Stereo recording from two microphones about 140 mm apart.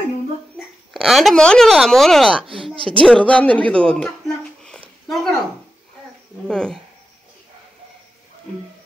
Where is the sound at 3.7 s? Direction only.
5° left (ahead or behind).